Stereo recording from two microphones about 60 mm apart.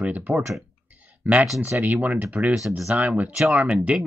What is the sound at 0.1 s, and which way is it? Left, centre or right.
Speech, right.